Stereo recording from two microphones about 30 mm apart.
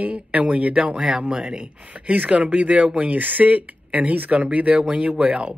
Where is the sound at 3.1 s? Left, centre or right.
Right.